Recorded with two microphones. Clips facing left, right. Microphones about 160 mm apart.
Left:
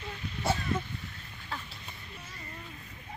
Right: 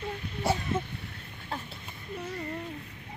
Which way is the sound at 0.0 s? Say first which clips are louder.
Right 4 dB; 55° right (ahead or behind).